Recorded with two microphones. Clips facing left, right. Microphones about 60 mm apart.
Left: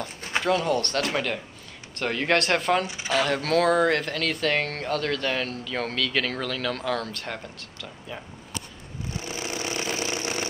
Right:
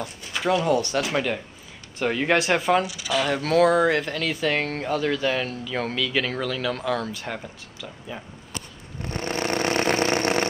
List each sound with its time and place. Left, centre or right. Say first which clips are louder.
0.4 s speech: right 2 dB; centre
2.9 s speech: even; left
3.2 s speech: right 3 dB; centre
9.0 s vehicle: right 7 dB; right